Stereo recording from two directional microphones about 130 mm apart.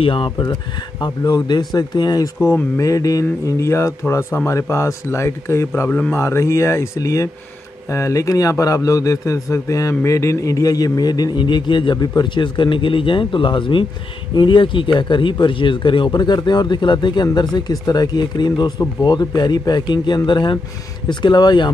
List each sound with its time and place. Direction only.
0.0 s a man's voice: 40° left (ahead or behind)